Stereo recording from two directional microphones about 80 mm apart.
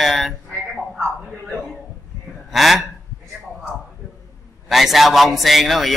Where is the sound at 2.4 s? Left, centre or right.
Centre.